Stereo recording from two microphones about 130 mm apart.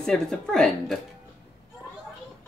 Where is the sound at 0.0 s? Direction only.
5° left (ahead or behind).